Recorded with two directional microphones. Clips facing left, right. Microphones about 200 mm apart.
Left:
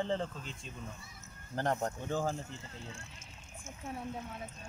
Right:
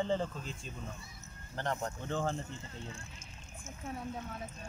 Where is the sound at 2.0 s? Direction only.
5° left (ahead or behind).